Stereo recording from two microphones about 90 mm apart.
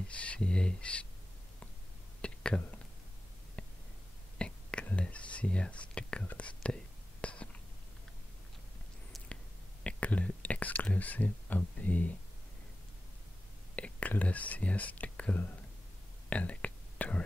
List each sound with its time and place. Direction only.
0.1 s speech: 15° left (ahead or behind)
2.2 s whispering: 10° left (ahead or behind)
3.6 s a sound: 15° left (ahead or behind)
4.4 s whispering: 10° left (ahead or behind)
9.8 s speech: 15° left (ahead or behind)
13.7 s speech: 15° left (ahead or behind)
16.3 s whispering: 15° left (ahead or behind)